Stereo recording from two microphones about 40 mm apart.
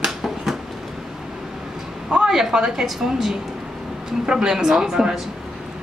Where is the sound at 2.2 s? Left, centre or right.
Centre.